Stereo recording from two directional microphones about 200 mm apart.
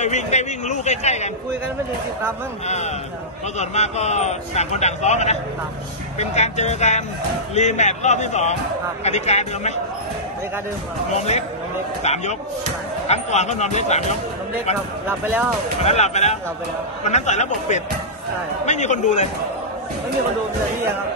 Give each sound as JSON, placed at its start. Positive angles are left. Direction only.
{"t": 0.0, "sound": "a man's voice", "side_deg": 35}
{"t": 2.6, "sound": "a man's voice", "side_deg": 35}
{"t": 12.0, "sound": "a man's voice", "side_deg": 35}
{"t": 15.8, "sound": "a man's voice", "side_deg": 35}